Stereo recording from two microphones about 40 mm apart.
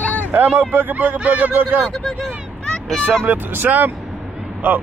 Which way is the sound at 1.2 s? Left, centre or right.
Right.